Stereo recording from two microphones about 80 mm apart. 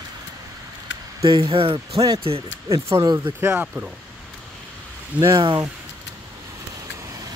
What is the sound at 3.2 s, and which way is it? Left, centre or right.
Speech, right.